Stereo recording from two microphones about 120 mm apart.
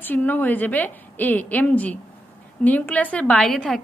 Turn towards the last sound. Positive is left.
turn(degrees=5)  # may be behind; listen again after turning